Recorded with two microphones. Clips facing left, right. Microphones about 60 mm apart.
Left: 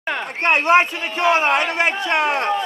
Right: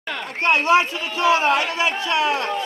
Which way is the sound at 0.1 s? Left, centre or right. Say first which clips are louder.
Left 1 dB; left.